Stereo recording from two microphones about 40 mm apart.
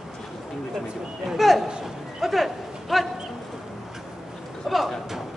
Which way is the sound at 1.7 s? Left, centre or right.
Centre.